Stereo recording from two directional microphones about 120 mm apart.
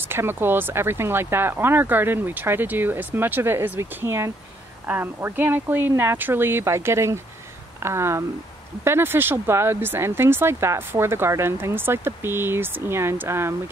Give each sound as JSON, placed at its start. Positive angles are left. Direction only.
{"t": 0.1, "sound": "speech", "side_deg": -20}